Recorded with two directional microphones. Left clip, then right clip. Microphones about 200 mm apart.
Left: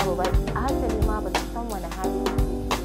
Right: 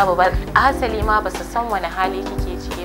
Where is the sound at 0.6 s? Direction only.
15° right (ahead or behind).